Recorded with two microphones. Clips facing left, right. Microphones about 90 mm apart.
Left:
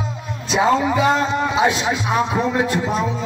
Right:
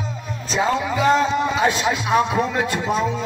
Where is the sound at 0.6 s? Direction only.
20° left (ahead or behind).